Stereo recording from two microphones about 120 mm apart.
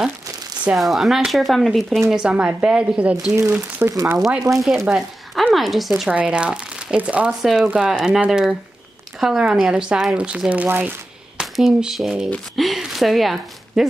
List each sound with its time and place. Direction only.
0.7 s speech: centre (ahead or behind)
3.3 s speech: 20° right (ahead or behind)
4.8 s speech: 5° right (ahead or behind)
11.3 s speech: 5° right (ahead or behind)